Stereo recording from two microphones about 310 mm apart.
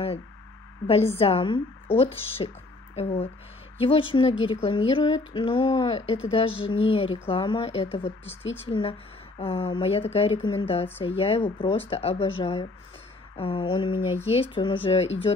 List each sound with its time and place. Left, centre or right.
1.1 s speech: centre